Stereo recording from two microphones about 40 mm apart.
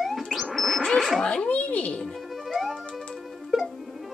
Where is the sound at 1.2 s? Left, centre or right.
Left.